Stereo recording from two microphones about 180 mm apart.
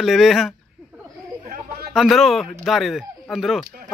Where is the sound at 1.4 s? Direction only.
50° right (ahead or behind).